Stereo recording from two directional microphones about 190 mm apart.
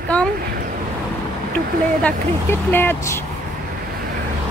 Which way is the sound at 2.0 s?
10° left (ahead or behind).